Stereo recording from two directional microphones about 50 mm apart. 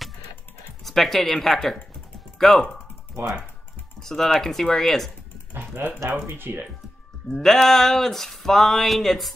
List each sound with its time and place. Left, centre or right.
0.8 s a sound: centre
2.3 s speech: centre
4.0 s speech: centre
5.5 s music: right
6.2 s speech: right
7.3 s a sound: centre